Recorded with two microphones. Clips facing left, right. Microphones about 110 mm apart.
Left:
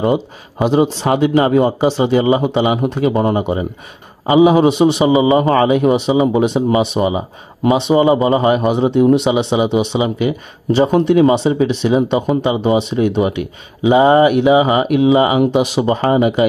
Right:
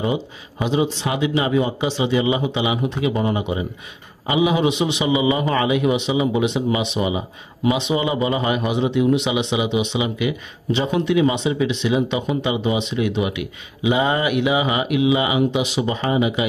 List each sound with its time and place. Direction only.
0.0 s a man's voice: 50° left (ahead or behind)